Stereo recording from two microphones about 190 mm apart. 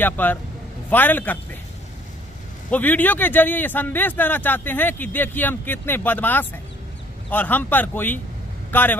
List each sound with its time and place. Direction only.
0.0 s speech: 10° left (ahead or behind)
2.7 s speech: 10° left (ahead or behind)